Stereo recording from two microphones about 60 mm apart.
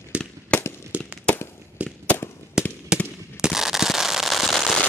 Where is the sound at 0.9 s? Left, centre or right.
Right.